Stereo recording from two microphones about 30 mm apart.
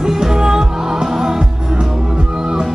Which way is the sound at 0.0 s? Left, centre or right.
Centre.